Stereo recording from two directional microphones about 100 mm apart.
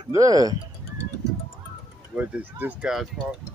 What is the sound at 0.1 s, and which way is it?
Speech, 35° right (ahead or behind).